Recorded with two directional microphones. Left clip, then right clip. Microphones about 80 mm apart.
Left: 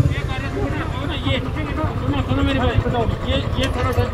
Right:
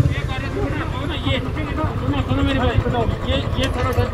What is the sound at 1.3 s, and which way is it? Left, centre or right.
Speech, centre.